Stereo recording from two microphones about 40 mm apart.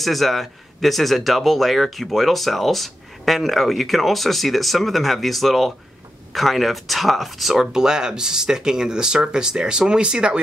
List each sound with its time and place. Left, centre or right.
0.0 s speech: centre; by 10.4 s right